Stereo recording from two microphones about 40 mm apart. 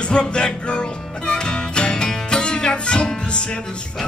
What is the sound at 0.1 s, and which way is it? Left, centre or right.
Music, left.